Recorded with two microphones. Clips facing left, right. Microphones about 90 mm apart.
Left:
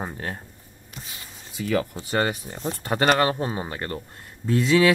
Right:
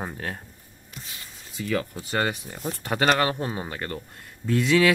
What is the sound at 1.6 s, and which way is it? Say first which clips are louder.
Speech: left 3 dB; 10° left (ahead or behind).